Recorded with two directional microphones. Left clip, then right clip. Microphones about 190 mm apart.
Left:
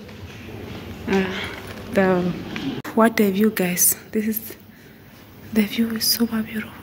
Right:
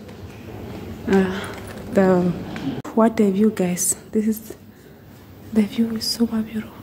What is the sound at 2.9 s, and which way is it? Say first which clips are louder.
A woman's voice: even; 10° right (ahead or behind).